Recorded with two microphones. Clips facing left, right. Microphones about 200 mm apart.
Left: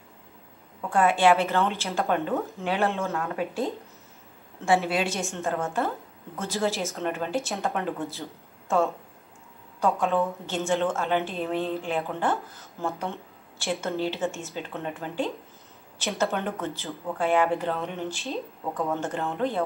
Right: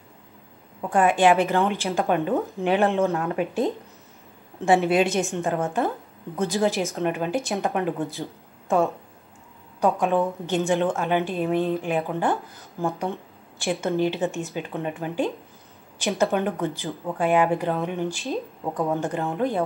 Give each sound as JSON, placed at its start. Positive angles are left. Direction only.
{"t": 0.7, "sound": "speech", "side_deg": -15}